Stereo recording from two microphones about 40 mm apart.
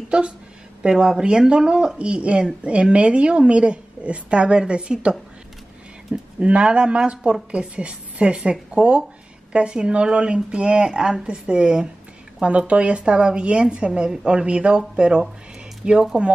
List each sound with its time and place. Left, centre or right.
0.1 s speech: right
2.0 s speech: right
6.4 s speech: right